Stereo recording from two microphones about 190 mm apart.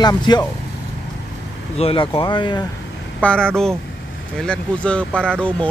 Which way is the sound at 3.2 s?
5° left (ahead or behind).